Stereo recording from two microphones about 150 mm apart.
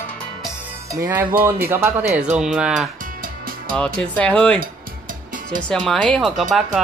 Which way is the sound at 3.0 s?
70° right (ahead or behind).